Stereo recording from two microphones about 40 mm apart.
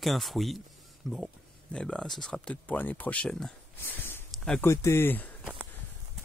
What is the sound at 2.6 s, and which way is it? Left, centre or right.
Speech, left.